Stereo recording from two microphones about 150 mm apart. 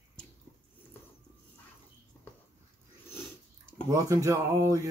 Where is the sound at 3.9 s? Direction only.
20° right (ahead or behind).